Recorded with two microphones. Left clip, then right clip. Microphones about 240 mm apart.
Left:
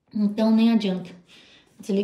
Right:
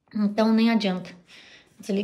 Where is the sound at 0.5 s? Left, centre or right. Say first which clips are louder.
Left 1 dB; centre.